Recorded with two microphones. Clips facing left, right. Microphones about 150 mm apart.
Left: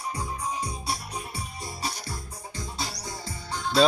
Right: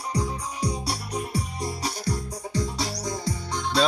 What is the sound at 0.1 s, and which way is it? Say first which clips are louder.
Music: right 5 dB; 80° right.